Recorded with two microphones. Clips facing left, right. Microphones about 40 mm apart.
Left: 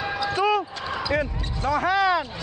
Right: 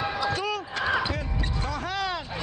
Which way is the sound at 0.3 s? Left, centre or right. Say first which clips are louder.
Left 7 dB; left.